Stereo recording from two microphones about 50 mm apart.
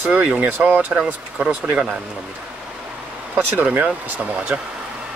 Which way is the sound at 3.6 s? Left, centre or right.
Right.